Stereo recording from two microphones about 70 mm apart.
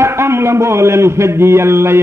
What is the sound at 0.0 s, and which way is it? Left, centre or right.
A man's voice, right.